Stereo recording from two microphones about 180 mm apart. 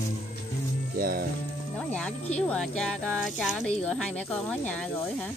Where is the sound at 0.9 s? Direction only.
55° right (ahead or behind).